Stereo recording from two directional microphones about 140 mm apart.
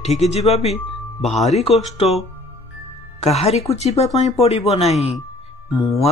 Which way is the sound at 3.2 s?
50° left (ahead or behind).